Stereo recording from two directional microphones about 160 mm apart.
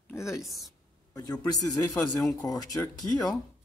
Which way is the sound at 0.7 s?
25° left (ahead or behind).